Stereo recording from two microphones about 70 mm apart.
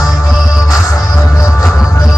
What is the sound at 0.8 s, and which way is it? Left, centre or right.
Music, left.